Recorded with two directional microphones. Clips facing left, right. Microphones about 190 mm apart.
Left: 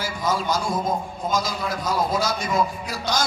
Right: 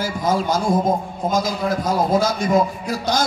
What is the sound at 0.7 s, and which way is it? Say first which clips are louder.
Speech: right 7 dB; 30° right (ahead or behind).